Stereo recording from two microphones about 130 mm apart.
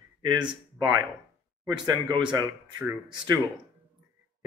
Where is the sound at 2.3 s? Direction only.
10° right (ahead or behind).